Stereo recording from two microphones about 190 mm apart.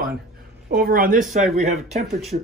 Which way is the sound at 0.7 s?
50° right (ahead or behind).